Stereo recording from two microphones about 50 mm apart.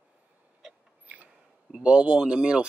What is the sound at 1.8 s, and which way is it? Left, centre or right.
Speech, right.